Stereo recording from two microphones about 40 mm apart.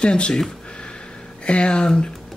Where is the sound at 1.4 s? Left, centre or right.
Left.